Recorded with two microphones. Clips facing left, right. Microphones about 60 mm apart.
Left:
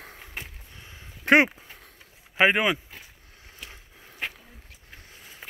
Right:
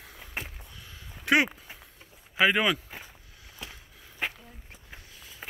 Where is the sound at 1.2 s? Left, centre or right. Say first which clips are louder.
Left 5 dB; left.